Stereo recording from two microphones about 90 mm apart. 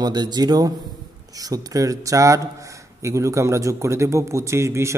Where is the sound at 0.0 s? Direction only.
50° right (ahead or behind).